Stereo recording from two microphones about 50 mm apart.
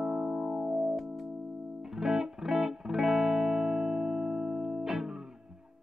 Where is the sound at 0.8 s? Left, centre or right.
Centre.